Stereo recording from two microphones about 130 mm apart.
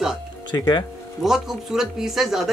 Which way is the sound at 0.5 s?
30° left (ahead or behind).